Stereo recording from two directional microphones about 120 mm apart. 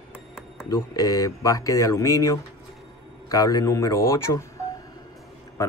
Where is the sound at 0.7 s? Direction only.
30° left (ahead or behind).